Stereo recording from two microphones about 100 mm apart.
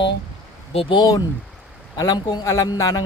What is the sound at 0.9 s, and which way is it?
Speech, 40° left (ahead or behind).